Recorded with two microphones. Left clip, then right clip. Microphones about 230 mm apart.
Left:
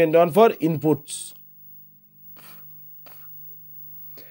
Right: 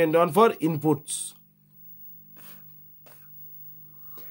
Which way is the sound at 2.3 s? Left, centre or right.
Centre.